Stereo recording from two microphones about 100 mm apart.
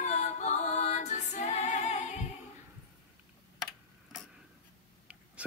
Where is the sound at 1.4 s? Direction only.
90° left.